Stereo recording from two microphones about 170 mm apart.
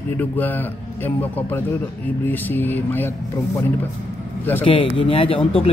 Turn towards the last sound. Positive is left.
turn(degrees=30)  # may be behind; listen again after turning